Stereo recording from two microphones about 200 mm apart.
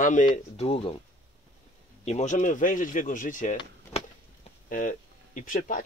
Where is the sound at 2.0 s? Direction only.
35° left (ahead or behind).